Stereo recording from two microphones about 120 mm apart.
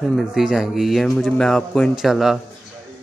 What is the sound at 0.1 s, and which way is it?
Speech, 5° right (ahead or behind).